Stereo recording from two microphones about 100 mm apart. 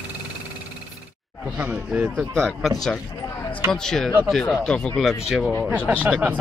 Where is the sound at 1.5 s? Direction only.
15° right (ahead or behind).